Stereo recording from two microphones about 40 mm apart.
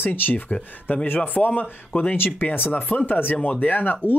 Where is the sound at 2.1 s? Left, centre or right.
Left.